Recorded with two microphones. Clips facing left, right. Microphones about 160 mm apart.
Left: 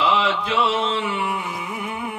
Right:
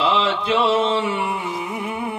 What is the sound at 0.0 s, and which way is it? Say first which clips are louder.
Mantra: right 1 dB; 30° right (ahead or behind).